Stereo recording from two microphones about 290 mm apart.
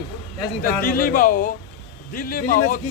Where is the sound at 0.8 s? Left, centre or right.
Left.